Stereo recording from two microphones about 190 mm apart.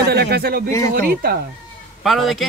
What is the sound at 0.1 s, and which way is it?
Speech, 55° right (ahead or behind).